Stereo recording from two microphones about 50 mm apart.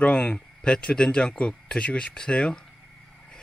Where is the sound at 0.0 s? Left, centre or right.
Left.